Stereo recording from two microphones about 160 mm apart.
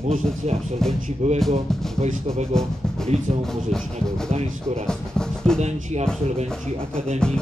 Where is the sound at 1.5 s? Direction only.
45° right (ahead or behind).